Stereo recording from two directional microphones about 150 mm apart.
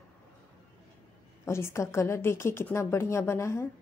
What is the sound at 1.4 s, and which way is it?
A woman's voice, 20° left (ahead or behind).